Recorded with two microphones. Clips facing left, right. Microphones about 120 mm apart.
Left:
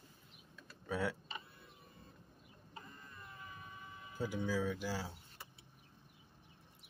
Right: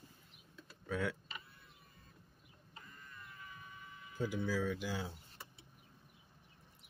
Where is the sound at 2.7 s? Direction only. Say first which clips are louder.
Left 2 dB; 30° left (ahead or behind).